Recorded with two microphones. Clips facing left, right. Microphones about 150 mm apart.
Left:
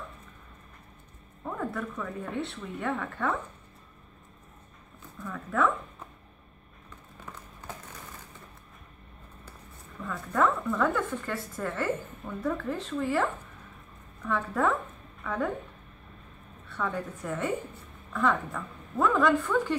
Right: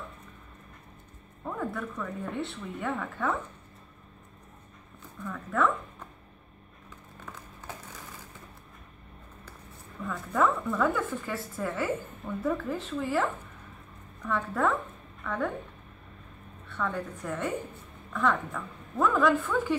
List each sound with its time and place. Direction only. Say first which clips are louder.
1.4 s speech: even; centre (ahead or behind)
5.2 s speech: even; centre (ahead or behind)
10.0 s speech: even; centre (ahead or behind)
16.6 s speech: even; centre (ahead or behind)